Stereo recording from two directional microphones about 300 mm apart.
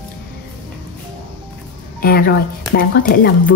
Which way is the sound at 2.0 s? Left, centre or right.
Left.